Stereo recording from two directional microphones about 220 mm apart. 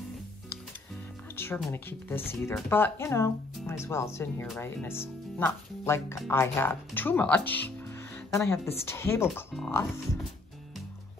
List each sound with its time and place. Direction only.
1.3 s speech: 10° left (ahead or behind)